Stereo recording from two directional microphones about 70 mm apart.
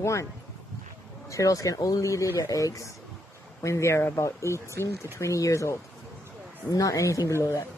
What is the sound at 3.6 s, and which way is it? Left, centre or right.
Speech, left.